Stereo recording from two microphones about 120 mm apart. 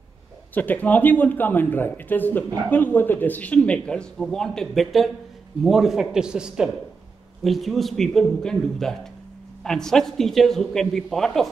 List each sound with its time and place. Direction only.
0.6 s speech: 15° left (ahead or behind)